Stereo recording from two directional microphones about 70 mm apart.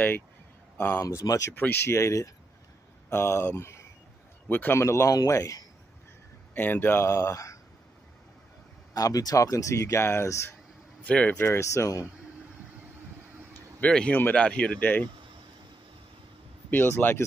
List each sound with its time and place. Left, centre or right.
0.7 s speech: left
1.0 s speech: left
1.5 s speech: left
3.1 s speech: left
4.5 s speech: left
4.7 s speech: left
6.5 s speech: left
8.9 s speech: left
11.1 s speech: centre
11.3 s speech: left
13.7 s speech: centre
16.7 s speech: left